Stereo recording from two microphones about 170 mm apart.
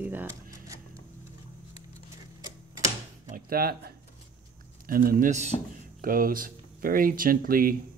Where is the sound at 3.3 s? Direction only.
60° right (ahead or behind).